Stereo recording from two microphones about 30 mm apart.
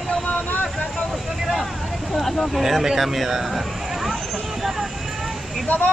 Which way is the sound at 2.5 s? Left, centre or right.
Centre.